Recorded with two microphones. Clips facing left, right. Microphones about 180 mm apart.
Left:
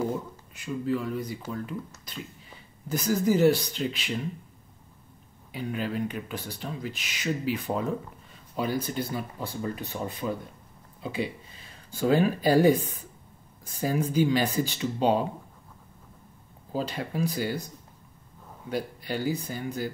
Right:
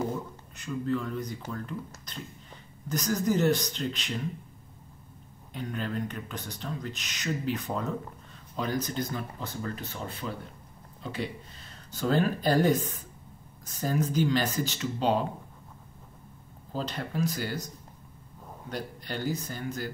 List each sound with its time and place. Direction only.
0.6 s speech: 5° left (ahead or behind)
5.5 s speech: 5° left (ahead or behind)
16.7 s speech: 10° left (ahead or behind)
18.7 s speech: 10° left (ahead or behind)